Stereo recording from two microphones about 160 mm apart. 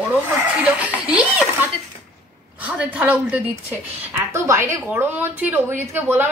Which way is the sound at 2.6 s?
10° right (ahead or behind).